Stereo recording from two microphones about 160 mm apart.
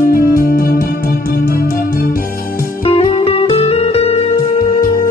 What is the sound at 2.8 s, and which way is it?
Music, 35° left (ahead or behind).